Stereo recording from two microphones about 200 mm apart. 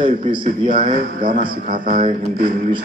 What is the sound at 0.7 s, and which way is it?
Speech, 40° right (ahead or behind).